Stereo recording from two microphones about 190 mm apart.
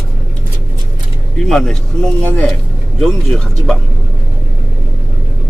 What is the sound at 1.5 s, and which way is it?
Speech, centre (ahead or behind).